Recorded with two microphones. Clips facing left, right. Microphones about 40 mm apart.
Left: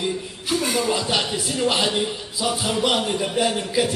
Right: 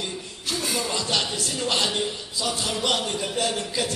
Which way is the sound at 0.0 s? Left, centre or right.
Left.